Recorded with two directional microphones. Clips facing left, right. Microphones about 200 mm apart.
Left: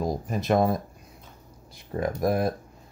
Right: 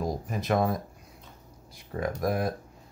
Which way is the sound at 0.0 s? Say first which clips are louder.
Left 3 dB; 25° left (ahead or behind).